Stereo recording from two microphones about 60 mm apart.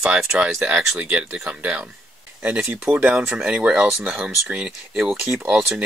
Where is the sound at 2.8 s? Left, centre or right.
Right.